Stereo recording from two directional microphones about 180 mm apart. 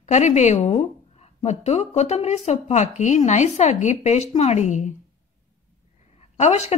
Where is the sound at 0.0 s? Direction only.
40° left (ahead or behind).